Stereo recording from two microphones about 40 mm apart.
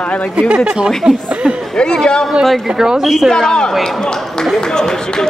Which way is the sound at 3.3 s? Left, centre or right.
Centre.